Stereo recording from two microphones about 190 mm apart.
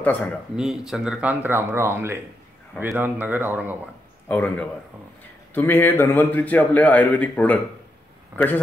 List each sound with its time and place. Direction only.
0.0 s a man's voice: 10° left (ahead or behind)
0.6 s speech: centre (ahead or behind)
4.3 s a man's voice: 10° left (ahead or behind)
8.3 s a man's voice: 15° right (ahead or behind)